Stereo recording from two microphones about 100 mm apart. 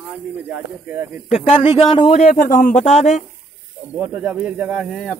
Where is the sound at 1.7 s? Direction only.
65° left (ahead or behind).